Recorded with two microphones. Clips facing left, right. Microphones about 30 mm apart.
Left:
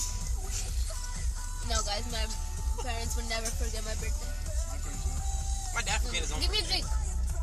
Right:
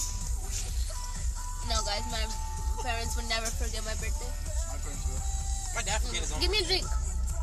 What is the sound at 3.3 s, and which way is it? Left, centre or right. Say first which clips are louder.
Speech: right 3 dB; right.